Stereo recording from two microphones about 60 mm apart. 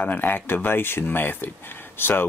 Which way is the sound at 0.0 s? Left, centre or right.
Left.